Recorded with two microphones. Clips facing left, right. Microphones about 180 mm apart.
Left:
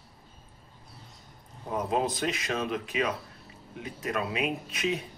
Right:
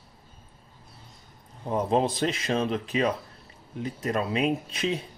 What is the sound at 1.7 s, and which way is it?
Speech, 30° right (ahead or behind).